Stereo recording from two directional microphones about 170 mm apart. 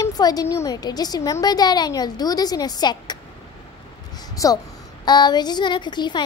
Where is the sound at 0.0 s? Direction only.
20° left (ahead or behind).